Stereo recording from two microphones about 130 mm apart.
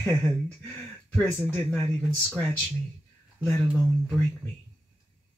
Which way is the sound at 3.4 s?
20° left (ahead or behind).